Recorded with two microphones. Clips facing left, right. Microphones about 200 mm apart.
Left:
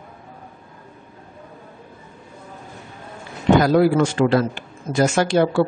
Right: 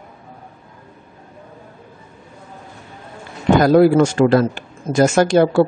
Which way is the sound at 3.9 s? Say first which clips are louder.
Right 4 dB; 45° right (ahead or behind).